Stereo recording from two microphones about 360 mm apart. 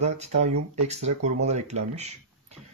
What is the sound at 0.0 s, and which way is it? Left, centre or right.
Speech, centre.